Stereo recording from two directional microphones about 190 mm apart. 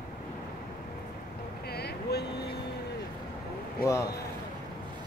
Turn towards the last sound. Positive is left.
turn(degrees=15)  # may be behind; listen again after turning